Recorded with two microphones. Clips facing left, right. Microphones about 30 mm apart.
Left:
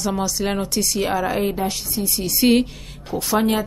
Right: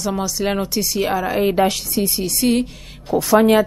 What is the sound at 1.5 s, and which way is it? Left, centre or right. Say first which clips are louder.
Speech: right 7 dB; right.